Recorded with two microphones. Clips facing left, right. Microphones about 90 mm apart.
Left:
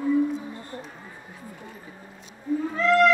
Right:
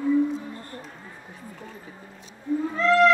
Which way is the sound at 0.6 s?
20° left (ahead or behind).